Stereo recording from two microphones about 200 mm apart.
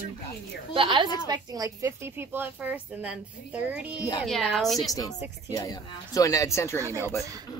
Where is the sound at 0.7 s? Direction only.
25° right (ahead or behind); by 4.9 s centre (ahead or behind).